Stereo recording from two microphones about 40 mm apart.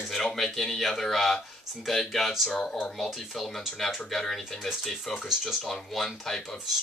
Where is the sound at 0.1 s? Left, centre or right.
Centre.